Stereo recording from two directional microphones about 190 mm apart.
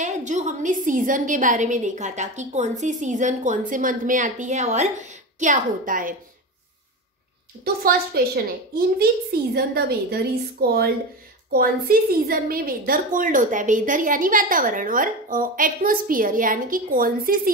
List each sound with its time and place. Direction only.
0.0 s a woman's voice: 40° right (ahead or behind)
7.6 s a woman's voice: 55° right (ahead or behind)